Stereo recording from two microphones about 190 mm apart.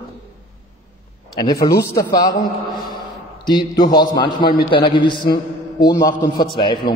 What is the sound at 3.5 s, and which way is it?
A man's voice, 20° left (ahead or behind).